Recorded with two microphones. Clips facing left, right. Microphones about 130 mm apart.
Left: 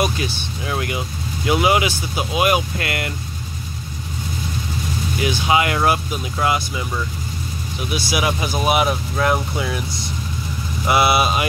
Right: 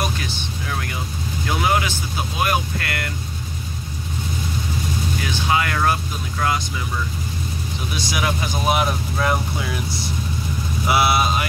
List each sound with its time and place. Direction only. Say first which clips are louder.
0.7 s speech: left 6 dB; 15° left (ahead or behind)
5.2 s speech: left 5 dB; 15° left (ahead or behind)
8.0 s speech: left 2 dB; 10° left (ahead or behind)
10.9 s speech: left 2 dB; centre (ahead or behind)